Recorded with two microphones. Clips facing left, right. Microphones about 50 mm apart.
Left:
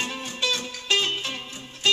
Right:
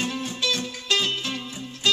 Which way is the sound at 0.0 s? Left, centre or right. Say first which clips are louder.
Right 1 dB; left.